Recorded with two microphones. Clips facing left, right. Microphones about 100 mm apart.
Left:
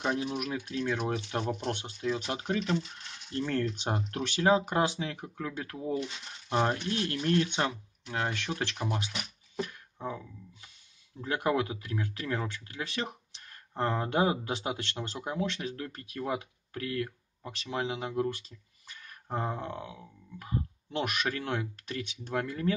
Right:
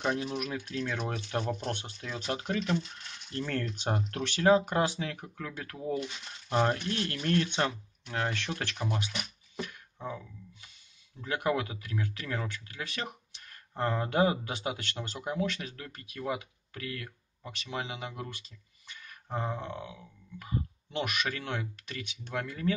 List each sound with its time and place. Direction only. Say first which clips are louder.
0.0 s speech: even; 10° left (ahead or behind)
9.6 s a sound: left 3 dB; 35° left (ahead or behind)
11.1 s speech: left 1 dB; 30° left (ahead or behind)